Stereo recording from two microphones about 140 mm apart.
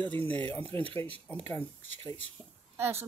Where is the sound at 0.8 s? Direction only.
10° left (ahead or behind).